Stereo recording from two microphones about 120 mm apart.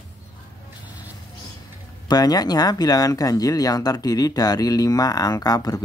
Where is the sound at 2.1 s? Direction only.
35° left (ahead or behind).